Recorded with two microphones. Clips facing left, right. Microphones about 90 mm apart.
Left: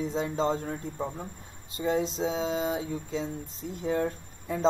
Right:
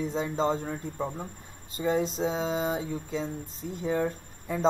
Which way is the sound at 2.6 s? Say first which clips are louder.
Even; 45° right (ahead or behind).